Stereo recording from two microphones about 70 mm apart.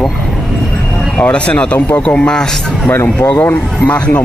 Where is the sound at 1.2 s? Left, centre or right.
Centre.